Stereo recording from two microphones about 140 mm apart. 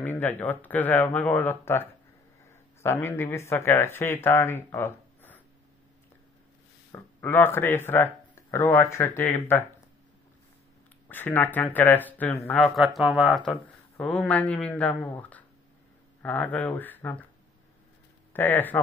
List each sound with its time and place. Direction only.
0.0 s speech: 15° left (ahead or behind)
6.9 s speech: 15° left (ahead or behind)
11.1 s speech: 15° left (ahead or behind)
12.5 s speech: centre (ahead or behind)
18.3 s speech: 15° left (ahead or behind)